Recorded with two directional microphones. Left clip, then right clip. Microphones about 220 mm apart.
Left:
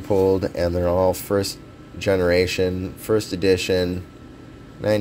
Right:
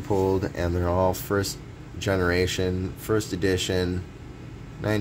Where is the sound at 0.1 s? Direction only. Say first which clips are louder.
Left 6 dB; 20° left (ahead or behind).